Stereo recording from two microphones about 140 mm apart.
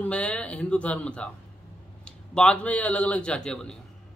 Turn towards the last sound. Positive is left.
turn(degrees=5)  # may be behind; listen again after turning